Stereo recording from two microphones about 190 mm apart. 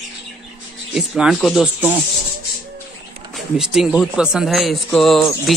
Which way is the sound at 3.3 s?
5° right (ahead or behind).